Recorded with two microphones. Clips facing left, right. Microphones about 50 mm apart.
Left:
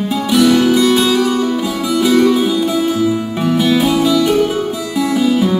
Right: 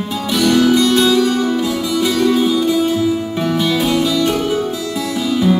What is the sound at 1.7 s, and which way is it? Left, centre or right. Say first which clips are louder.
Music: left 2 dB; centre.